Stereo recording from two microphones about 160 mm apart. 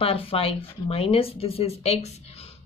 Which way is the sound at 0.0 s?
35° left (ahead or behind).